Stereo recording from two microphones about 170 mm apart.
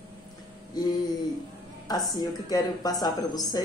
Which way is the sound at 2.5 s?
20° left (ahead or behind).